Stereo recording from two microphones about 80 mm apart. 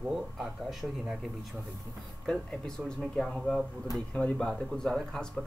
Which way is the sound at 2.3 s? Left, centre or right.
Centre.